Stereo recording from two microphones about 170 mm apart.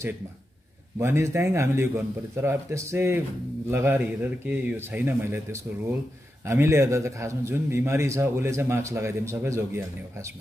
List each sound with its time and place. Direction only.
0.9 s a man's voice: 15° right (ahead or behind)